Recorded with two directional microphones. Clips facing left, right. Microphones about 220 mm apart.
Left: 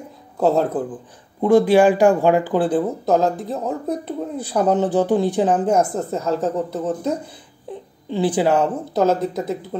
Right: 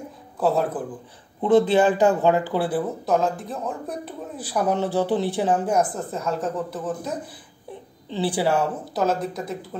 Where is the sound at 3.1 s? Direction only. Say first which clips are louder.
Left 3 dB; 40° left (ahead or behind).